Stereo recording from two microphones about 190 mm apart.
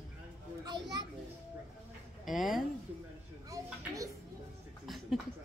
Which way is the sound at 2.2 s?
Centre (ahead or behind).